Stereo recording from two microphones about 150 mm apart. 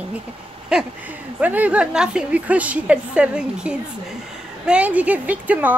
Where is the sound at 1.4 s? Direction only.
10° right (ahead or behind).